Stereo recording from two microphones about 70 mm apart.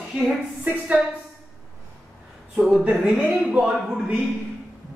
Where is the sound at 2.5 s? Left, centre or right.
Centre.